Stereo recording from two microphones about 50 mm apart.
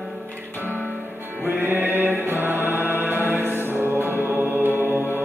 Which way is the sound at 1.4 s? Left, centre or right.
Right.